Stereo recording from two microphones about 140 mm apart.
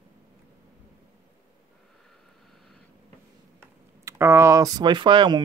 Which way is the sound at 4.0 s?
20° right (ahead or behind).